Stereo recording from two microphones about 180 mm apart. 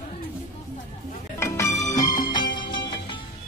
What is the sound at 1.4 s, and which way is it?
Music, 15° left (ahead or behind).